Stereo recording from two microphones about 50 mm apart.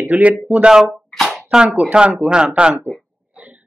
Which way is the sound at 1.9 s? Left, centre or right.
Right.